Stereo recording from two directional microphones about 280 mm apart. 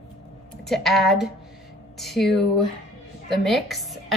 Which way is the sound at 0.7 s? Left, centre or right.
Centre.